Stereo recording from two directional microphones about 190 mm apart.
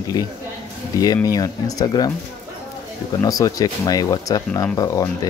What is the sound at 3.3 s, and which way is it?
Speech, 20° left (ahead or behind).